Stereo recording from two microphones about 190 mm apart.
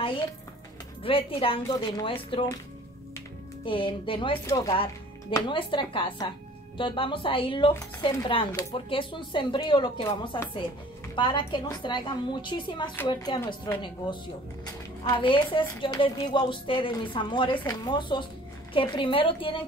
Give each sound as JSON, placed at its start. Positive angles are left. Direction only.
{"t": 1.0, "sound": "a woman's voice", "side_deg": 30}
{"t": 3.6, "sound": "a woman's voice", "side_deg": 25}
{"t": 4.5, "sound": "speech", "side_deg": 15}
{"t": 5.3, "sound": "a woman's voice", "side_deg": 25}
{"t": 15.0, "sound": "a woman's voice", "side_deg": 25}